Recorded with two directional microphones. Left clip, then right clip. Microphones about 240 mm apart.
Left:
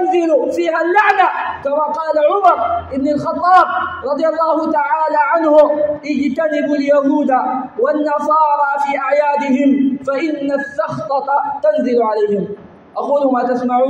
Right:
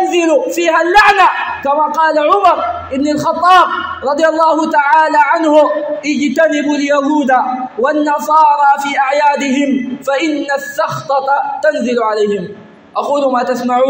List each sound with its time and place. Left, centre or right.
0.1 s a man's voice: right